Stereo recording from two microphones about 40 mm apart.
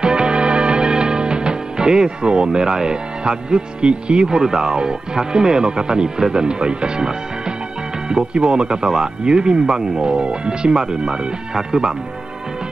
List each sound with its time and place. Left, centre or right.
0.0 s music: right
8.1 s speech: right